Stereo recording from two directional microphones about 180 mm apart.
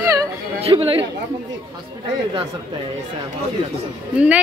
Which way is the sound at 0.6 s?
35° right (ahead or behind).